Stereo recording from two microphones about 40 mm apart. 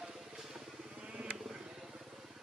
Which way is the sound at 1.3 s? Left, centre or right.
Centre.